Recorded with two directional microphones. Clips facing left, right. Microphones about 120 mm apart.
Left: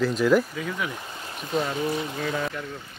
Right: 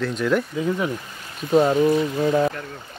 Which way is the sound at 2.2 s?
30° right (ahead or behind).